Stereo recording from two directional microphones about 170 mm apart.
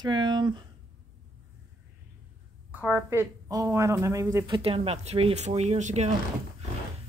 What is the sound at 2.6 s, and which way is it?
A woman's voice, 10° right (ahead or behind).